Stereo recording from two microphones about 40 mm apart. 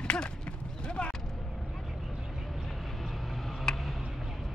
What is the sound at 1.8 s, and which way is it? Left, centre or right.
Vehicle, centre.